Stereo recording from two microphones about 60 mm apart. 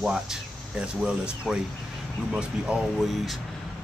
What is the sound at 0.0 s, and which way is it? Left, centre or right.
A man's voice, centre.